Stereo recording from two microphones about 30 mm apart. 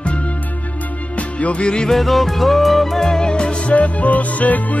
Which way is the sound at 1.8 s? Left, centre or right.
Centre.